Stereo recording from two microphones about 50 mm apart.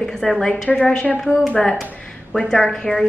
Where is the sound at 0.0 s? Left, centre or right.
Centre.